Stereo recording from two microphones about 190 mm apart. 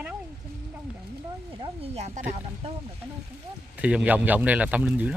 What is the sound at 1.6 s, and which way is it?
Speech, 30° right (ahead or behind).